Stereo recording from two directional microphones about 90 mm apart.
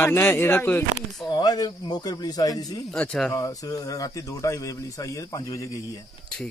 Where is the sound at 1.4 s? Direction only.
50° left (ahead or behind).